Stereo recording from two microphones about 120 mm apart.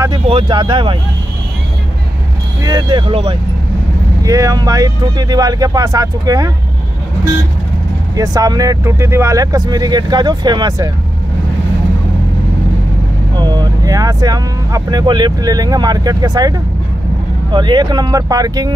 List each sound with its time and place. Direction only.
0.3 s speech: 45° right (ahead or behind)
2.6 s speech: 35° right (ahead or behind)
3.1 s speech: 50° right (ahead or behind)
4.2 s speech: 30° right (ahead or behind)
8.2 s speech: 30° right (ahead or behind)
13.4 s speech: 35° right (ahead or behind)